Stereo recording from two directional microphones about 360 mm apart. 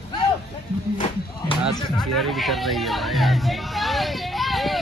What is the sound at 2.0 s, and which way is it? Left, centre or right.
Music, centre.